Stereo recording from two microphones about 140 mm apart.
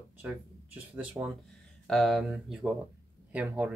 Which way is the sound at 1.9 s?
Centre (ahead or behind).